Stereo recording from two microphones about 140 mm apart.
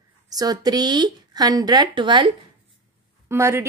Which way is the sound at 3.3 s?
20° right (ahead or behind).